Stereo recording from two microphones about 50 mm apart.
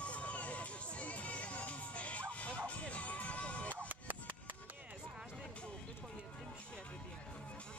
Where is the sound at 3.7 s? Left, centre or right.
Right.